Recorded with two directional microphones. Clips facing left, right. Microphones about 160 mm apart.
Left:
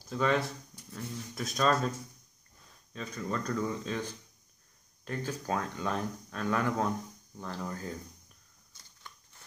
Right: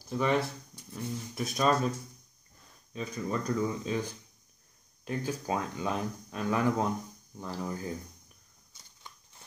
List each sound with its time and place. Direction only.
0.1 s speech: 10° right (ahead or behind)
2.9 s speech: 10° right (ahead or behind)
5.0 s speech: 15° right (ahead or behind)